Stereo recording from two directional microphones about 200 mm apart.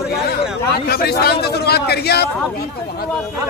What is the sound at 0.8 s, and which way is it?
A man's voice, 50° left (ahead or behind).